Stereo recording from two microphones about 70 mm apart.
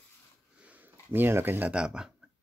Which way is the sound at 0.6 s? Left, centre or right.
Centre.